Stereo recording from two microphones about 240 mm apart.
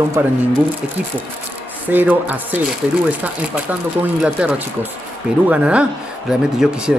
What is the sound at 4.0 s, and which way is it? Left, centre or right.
Speech, centre.